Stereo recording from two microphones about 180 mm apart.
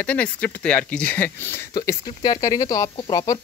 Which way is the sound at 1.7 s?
20° left (ahead or behind).